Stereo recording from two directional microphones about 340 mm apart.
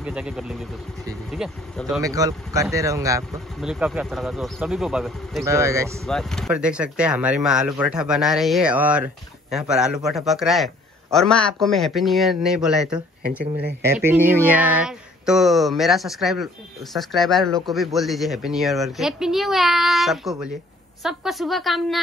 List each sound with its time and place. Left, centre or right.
0.0 s speech: centre
13.4 s speech: right
13.8 s speech: centre